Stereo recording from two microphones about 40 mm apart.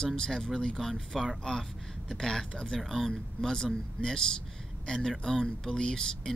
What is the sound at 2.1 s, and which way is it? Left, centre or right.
Speech, centre.